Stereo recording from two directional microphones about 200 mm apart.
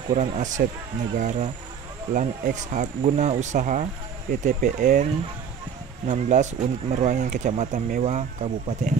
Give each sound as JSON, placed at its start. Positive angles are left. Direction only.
{"t": 0.1, "sound": "speech", "side_deg": -35}
{"t": 6.0, "sound": "speech", "side_deg": -35}